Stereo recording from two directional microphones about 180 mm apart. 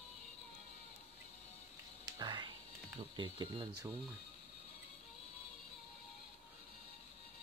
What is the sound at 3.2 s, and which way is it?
Speech, 25° right (ahead or behind).